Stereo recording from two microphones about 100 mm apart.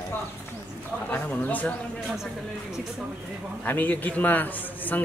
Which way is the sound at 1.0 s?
20° left (ahead or behind).